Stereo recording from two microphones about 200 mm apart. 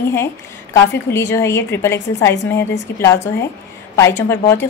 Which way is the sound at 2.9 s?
55° left (ahead or behind).